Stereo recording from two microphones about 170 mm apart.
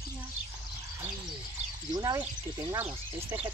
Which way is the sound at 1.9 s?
20° right (ahead or behind).